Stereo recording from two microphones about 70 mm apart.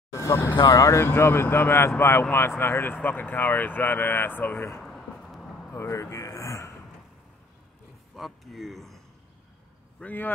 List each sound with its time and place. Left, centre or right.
0.3 s speech: left
0.7 s speech: left
1.0 s speech: left
3.0 s speech: left
4.8 s vehicle: centre
5.7 s speech: left
8.2 s speech: centre
10.0 s speech: left